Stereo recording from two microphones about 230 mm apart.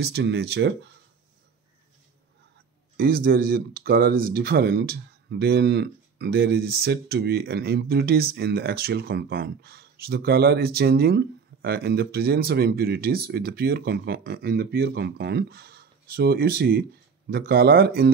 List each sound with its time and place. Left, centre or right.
0.0 s speech: right
3.0 s speech: right